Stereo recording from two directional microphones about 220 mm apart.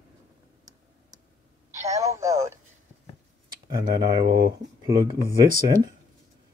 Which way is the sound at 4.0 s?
20° right (ahead or behind).